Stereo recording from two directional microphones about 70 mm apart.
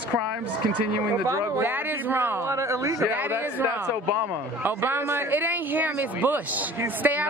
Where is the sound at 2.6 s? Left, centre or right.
Right.